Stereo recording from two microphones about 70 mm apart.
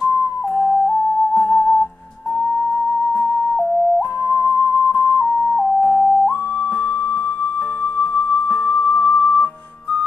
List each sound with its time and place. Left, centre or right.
0.6 s music: left
3.1 s music: centre
5.2 s music: left
8.6 s music: left